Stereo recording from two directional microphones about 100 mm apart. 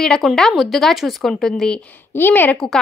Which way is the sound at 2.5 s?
5° left (ahead or behind).